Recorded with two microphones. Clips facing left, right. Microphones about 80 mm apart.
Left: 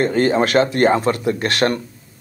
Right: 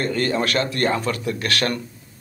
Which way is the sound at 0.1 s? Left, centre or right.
Left.